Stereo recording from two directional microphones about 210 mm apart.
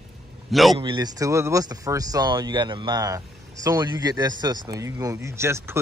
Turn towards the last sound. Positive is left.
turn(degrees=-10)  # may be behind; listen again after turning